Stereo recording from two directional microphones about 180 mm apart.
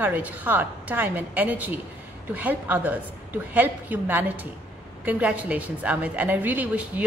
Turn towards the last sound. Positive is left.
turn(degrees=-10)  # may be behind; listen again after turning